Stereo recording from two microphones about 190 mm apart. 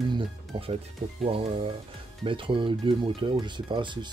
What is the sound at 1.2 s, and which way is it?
Speech, 30° right (ahead or behind).